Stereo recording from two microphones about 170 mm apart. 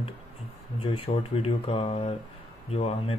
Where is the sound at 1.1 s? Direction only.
35° left (ahead or behind).